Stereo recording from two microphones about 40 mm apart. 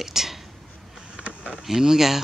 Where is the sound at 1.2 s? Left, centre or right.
Right.